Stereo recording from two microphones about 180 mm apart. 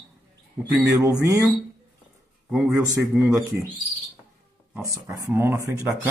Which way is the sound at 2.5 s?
Centre (ahead or behind).